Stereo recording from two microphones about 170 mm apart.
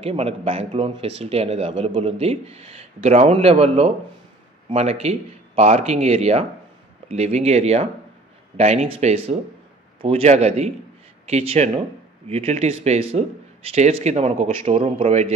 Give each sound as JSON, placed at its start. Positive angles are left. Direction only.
{"t": 0.0, "sound": "speech", "side_deg": -35}